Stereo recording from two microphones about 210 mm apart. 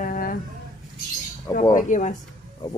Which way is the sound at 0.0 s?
40° left (ahead or behind).